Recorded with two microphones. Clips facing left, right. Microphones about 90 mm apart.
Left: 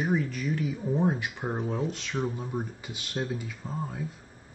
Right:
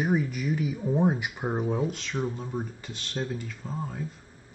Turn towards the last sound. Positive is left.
turn(degrees=5)  # may be behind; listen again after turning